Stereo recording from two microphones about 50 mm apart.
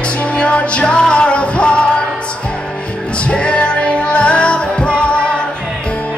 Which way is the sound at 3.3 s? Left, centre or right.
Left.